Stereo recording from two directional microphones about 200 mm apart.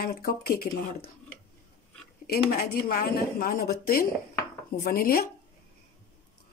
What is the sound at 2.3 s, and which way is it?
Speech, 50° left (ahead or behind).